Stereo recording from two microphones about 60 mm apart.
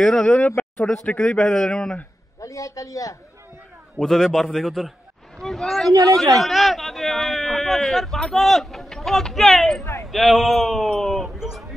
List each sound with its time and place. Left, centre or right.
0.0 s a man's voice: centre
2.4 s a man's voice: left
4.0 s a man's voice: centre
5.4 s a sound: centre
5.9 s a man's voice: right
6.4 s a man's voice: centre